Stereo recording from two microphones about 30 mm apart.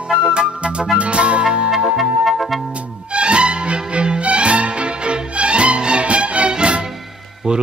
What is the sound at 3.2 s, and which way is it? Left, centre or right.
Music, right.